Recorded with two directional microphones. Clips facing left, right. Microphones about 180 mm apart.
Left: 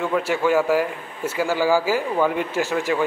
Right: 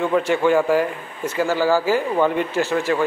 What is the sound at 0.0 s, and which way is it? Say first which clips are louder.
A man's voice: right 3 dB; 5° left (ahead or behind).